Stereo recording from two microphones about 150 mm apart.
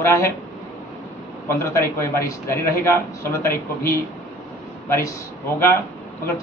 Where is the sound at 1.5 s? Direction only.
20° left (ahead or behind).